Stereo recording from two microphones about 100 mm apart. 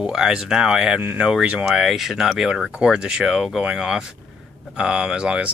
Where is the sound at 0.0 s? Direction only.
10° right (ahead or behind).